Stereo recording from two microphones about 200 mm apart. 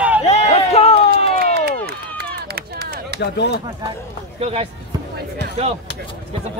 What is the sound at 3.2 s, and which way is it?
Speech, 60° left (ahead or behind).